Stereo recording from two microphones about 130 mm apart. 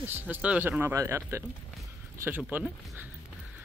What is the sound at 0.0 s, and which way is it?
Speech, 15° right (ahead or behind).